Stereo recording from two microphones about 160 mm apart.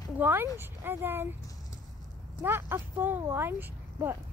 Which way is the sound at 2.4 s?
15° right (ahead or behind).